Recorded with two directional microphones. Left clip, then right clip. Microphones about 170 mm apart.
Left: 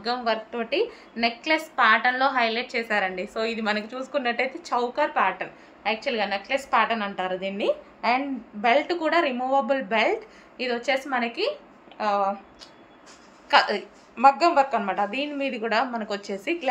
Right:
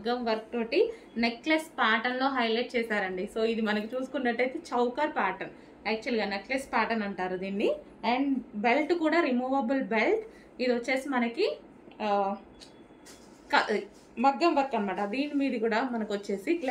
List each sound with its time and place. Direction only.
0.3 s a woman's voice: 15° right (ahead or behind)
13.5 s a woman's voice: 20° right (ahead or behind)